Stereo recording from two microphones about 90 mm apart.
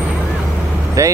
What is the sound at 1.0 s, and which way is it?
Vehicle, 35° right (ahead or behind).